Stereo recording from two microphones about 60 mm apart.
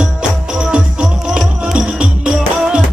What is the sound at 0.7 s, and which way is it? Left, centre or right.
Music, centre.